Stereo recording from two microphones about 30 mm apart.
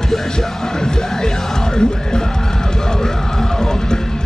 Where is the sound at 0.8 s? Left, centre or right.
Left.